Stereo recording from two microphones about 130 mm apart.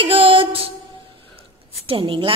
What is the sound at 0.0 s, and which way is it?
Music, 45° right (ahead or behind).